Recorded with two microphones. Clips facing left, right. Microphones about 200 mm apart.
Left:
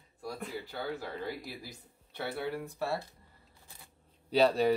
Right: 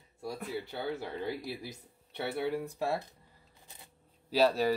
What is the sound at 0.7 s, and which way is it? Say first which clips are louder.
Speech: right 1 dB; 20° right (ahead or behind).